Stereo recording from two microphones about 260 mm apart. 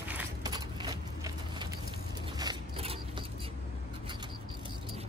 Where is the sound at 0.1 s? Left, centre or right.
Centre.